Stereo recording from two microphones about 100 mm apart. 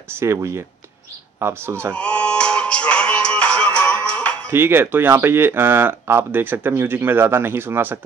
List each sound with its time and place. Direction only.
0.1 s speech: 30° right (ahead or behind)
2.0 s music: 10° left (ahead or behind)
4.5 s speech: 25° right (ahead or behind)